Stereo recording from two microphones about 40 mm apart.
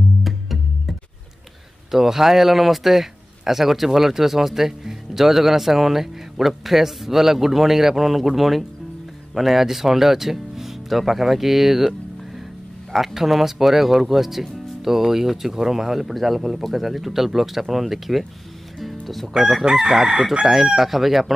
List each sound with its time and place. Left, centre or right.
0.2 s music: centre
1.9 s speech: centre
12.9 s speech: centre
18.9 s chicken: centre
19.2 s speech: centre
19.9 s chicken: centre
20.4 s speech: centre